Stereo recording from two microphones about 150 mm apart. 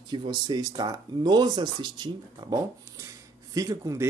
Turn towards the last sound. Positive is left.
turn(degrees=-25)  # may be behind; listen again after turning